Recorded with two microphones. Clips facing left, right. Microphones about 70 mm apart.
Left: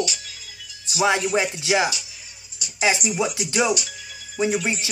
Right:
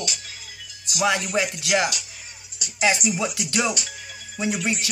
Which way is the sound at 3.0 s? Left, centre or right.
Centre.